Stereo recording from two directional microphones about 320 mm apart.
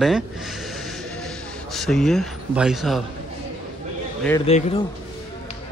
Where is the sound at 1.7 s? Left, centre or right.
Centre.